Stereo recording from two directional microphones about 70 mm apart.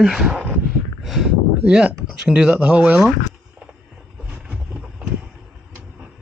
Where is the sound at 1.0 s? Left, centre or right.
Centre.